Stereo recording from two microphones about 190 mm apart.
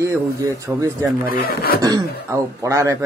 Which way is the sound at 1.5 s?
55° left (ahead or behind).